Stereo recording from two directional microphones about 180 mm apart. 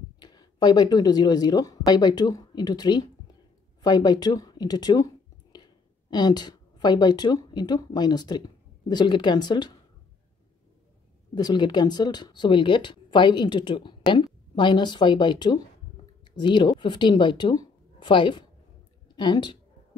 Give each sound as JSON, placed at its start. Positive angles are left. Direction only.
{"t": 0.2, "sound": "speech", "side_deg": 25}
{"t": 11.3, "sound": "a woman's voice", "side_deg": 25}